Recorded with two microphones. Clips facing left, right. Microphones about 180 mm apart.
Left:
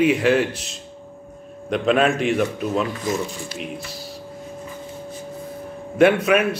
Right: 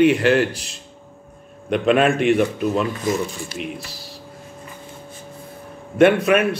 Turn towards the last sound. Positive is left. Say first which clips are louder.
# right 1 dB
turn(degrees=0)  # may be behind; listen again after turning